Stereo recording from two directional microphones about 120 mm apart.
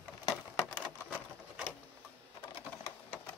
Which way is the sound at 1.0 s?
10° right (ahead or behind).